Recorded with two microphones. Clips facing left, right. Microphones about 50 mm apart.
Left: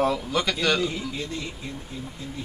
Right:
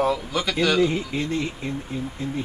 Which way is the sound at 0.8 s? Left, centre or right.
Right.